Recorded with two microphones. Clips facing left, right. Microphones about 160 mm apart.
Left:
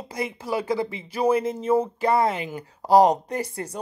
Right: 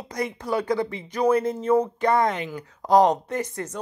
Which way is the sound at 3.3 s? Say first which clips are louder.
Right 1 dB; 35° left (ahead or behind).